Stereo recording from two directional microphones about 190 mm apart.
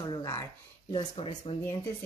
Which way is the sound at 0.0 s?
20° left (ahead or behind).